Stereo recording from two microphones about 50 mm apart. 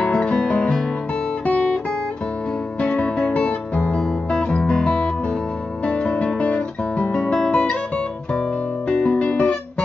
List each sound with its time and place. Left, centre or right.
0.0 s music: centre
1.4 s guitar: left
2.8 s music: left
3.3 s guitar: left
4.3 s music: left
5.9 s guitar: left
8.8 s music: centre
9.2 s guitar: left